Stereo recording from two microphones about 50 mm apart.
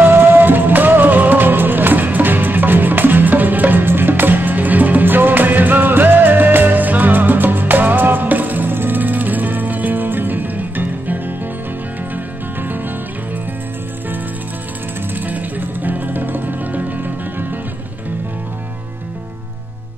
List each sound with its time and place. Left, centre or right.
0.0 s music: right
12.5 s music: right
15.1 s music: right